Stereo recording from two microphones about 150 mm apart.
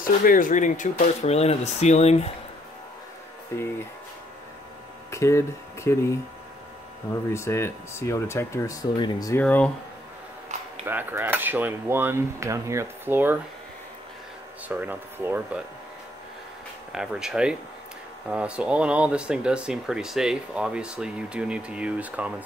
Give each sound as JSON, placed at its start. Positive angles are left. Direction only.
{"t": 0.0, "sound": "speech", "side_deg": 70}
{"t": 3.5, "sound": "speech", "side_deg": 15}
{"t": 5.1, "sound": "speech", "side_deg": 20}
{"t": 7.3, "sound": "speech", "side_deg": 20}
{"t": 8.9, "sound": "speech", "side_deg": 30}
{"t": 9.3, "sound": "speech", "side_deg": 10}
{"t": 10.9, "sound": "speech", "side_deg": -15}
{"t": 14.7, "sound": "speech", "side_deg": -10}
{"t": 16.9, "sound": "speech", "side_deg": -5}